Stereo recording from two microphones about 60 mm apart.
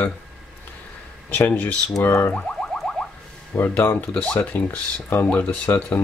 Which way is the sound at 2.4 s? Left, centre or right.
Centre.